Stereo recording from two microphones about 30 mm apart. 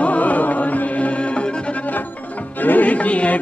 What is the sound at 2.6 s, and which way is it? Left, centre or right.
Music, left.